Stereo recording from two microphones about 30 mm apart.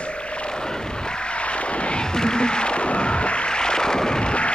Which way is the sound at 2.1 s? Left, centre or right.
Left.